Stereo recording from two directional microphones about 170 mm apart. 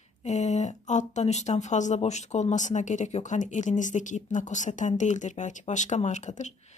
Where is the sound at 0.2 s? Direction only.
40° left (ahead or behind).